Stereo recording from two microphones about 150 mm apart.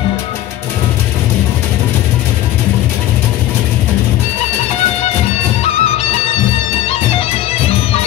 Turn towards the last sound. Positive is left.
turn(degrees=45)  # may be behind; listen again after turning